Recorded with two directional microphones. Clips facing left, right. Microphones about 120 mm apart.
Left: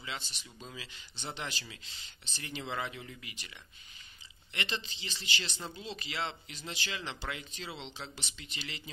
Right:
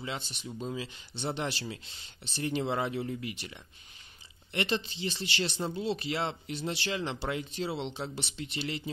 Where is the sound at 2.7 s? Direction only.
40° right (ahead or behind).